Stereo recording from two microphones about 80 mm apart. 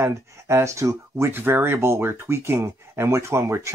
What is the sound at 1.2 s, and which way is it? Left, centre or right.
Speech, right.